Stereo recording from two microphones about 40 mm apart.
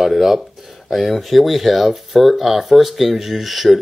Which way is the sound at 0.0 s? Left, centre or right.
Centre.